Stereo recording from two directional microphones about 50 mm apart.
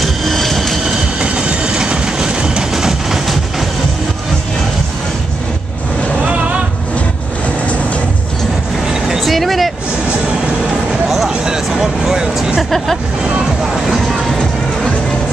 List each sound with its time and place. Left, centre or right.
0.0 s vehicle: centre
1.2 s train: right
2.7 s a sound: centre
9.2 s vehicle: centre
11.1 s a sound: centre
12.7 s hubbub: centre